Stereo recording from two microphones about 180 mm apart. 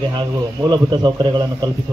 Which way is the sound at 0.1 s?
25° right (ahead or behind).